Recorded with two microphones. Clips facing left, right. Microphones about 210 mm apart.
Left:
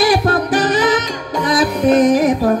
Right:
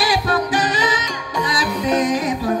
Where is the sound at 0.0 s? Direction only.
55° left (ahead or behind).